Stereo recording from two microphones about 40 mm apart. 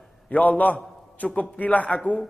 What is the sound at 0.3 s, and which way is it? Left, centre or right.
A man's voice, left.